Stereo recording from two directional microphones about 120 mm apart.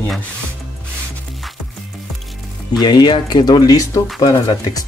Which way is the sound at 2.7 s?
35° left (ahead or behind).